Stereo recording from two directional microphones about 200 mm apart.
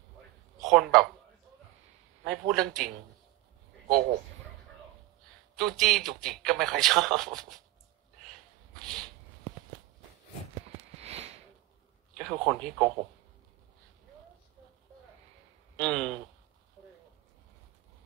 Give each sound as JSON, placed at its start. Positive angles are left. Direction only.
{"t": 0.7, "sound": "speech", "side_deg": 0}
{"t": 2.2, "sound": "a man's voice", "side_deg": 0}
{"t": 5.6, "sound": "a man's voice", "side_deg": 0}
{"t": 8.8, "sound": "a sound", "side_deg": 5}
{"t": 11.0, "sound": "a sound", "side_deg": -30}
{"t": 12.2, "sound": "a man's voice", "side_deg": 5}
{"t": 15.8, "sound": "a man's voice", "side_deg": 5}